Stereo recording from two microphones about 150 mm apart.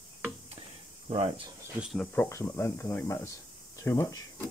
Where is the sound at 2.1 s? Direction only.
15° left (ahead or behind).